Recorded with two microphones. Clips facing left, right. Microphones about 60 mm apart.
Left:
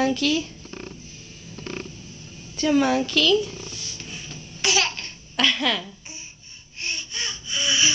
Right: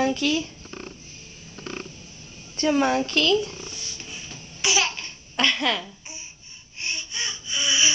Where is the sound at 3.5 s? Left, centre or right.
Centre.